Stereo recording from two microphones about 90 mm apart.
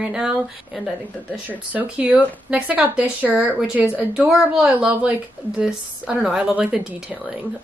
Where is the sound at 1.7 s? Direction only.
15° right (ahead or behind).